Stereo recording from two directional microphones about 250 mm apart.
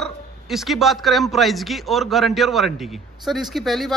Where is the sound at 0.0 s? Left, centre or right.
Centre.